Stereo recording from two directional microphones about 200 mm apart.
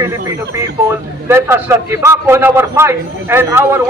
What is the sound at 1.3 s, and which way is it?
A man's voice, 10° right (ahead or behind).